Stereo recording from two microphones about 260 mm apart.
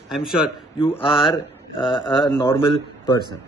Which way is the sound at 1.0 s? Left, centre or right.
Centre.